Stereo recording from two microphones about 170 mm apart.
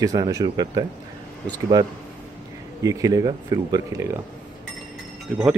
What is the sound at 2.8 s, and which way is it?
Speech, 20° right (ahead or behind).